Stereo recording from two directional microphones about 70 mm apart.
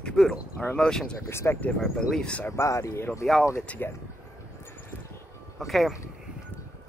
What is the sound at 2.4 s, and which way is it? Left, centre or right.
Speech, left.